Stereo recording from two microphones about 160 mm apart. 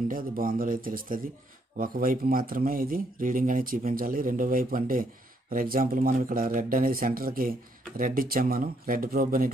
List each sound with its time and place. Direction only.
0.1 s speech: 60° right (ahead or behind)